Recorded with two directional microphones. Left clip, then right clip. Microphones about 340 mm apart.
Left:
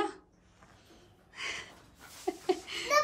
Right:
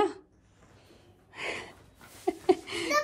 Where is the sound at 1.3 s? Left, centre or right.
Centre.